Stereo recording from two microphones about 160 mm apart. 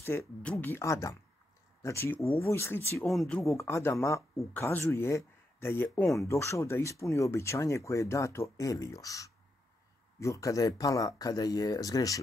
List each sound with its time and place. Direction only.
0.0 s speech: 15° left (ahead or behind)
3.1 s speech: centre (ahead or behind)
3.4 s speech: 20° left (ahead or behind)
5.9 s speech: centre (ahead or behind)
6.2 s speech: 20° left (ahead or behind)